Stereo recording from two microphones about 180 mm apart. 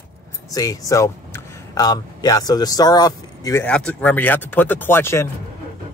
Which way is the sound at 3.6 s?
5° left (ahead or behind).